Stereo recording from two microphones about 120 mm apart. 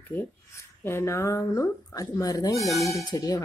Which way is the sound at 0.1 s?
20° left (ahead or behind).